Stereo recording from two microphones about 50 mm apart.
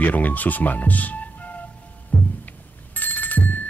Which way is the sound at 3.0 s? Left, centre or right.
Left.